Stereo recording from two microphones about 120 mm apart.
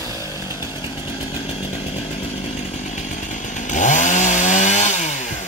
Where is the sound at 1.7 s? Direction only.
60° left (ahead or behind).